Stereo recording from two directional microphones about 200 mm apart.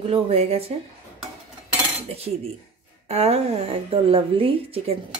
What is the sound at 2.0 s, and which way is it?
A woman's voice, 30° right (ahead or behind).